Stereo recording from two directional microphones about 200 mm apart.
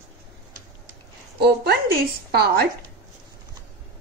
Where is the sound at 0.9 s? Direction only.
55° right (ahead or behind).